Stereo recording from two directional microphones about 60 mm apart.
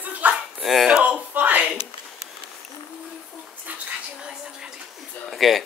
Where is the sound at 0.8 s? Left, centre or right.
Centre.